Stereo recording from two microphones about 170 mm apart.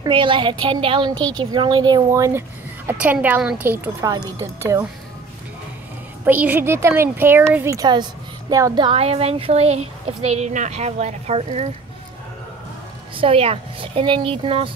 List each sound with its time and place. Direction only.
0.0 s a woman's voice: 30° right (ahead or behind); by 4.1 s 10° right (ahead or behind)
6.2 s speech: 10° right (ahead or behind); by 11.7 s 40° right (ahead or behind)
13.1 s speech: 30° right (ahead or behind)